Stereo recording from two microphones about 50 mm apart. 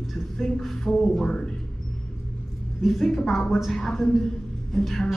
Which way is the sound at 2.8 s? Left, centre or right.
Centre.